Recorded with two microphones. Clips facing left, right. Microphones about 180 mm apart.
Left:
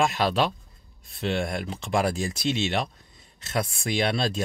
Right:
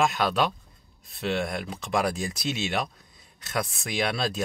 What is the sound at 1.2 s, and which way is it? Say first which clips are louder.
Speech: left 1 dB; centre (ahead or behind).